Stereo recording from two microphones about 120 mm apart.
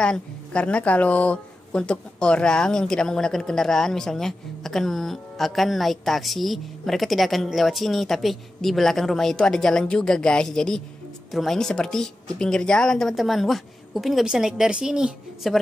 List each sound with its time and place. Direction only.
0.0 s a woman's voice: 10° left (ahead or behind)